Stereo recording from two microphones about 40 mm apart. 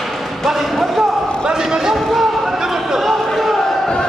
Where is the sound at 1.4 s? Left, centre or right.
Centre.